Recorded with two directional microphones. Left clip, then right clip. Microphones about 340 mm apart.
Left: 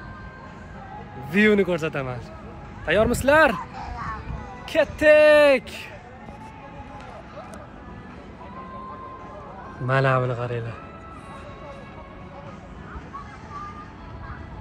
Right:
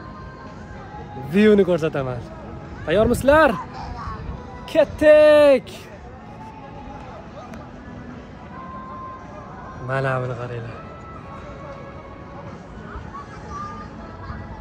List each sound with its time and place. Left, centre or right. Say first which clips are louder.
1.3 s speech: right 4 dB; centre
4.7 s speech: right 3 dB; centre
9.8 s a man's voice: left 2 dB; left